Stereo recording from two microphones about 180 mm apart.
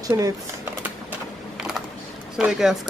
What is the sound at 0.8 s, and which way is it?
Typewriter, 5° right (ahead or behind).